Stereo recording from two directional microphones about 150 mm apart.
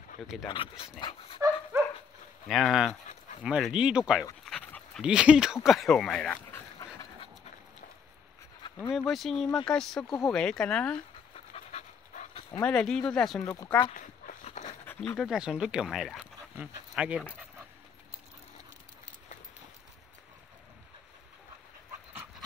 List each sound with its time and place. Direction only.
0.5 s speech: 30° left (ahead or behind)
2.4 s speech: centre (ahead or behind)
4.5 s dog: 10° left (ahead or behind)
5.0 s speech: 5° right (ahead or behind)
6.5 s dog: 20° left (ahead or behind)
8.9 s speech: centre (ahead or behind)
11.3 s dog: 45° left (ahead or behind)
12.6 s speech: 5° left (ahead or behind)
13.4 s speech: 20° left (ahead or behind)
13.9 s a sound: 60° left (ahead or behind)
14.9 s dog: 10° left (ahead or behind)
15.1 s speech: 5° right (ahead or behind)